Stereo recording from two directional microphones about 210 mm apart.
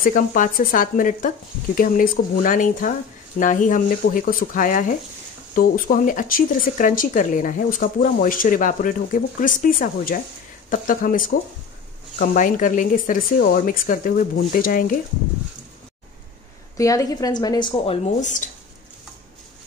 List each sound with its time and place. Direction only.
0.0 s speech: 40° left (ahead or behind)
16.7 s a woman's voice: 15° left (ahead or behind)
18.0 s speech: 35° left (ahead or behind)